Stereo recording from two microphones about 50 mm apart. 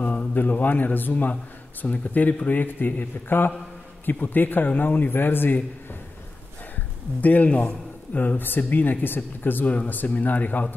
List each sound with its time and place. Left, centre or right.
0.0 s a man's voice: left
6.7 s a man's voice: left